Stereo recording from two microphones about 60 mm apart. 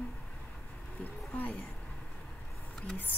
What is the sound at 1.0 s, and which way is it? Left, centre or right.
Speech, left.